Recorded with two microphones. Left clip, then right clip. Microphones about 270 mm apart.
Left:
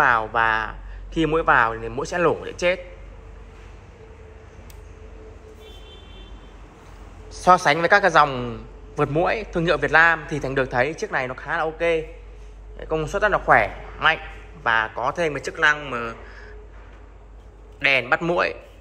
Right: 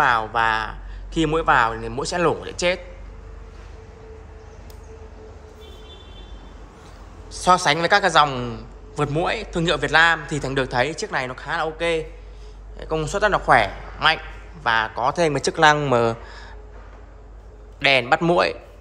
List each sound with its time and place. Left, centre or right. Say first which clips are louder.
0.0 s a man's voice: even; centre
7.3 s a man's voice: left 1 dB; centre
17.7 s a man's voice: right 2 dB; centre